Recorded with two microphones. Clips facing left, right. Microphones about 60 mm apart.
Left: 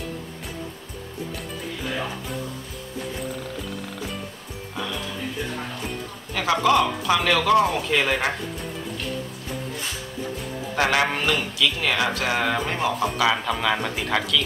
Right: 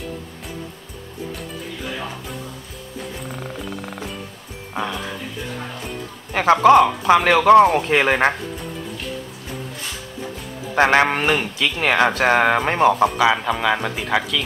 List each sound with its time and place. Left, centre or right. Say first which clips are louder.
6.3 s a man's voice: right 8 dB; right
10.7 s a man's voice: right 6 dB; right
13.2 s a man's voice: right 4 dB; centre